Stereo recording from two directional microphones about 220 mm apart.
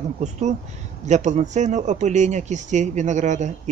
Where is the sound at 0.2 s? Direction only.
35° right (ahead or behind).